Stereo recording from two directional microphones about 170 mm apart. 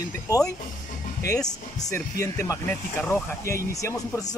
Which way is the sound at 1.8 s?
20° left (ahead or behind).